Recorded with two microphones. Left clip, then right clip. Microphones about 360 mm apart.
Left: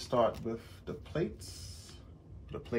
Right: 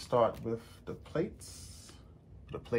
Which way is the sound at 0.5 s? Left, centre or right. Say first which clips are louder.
Right 1 dB; centre.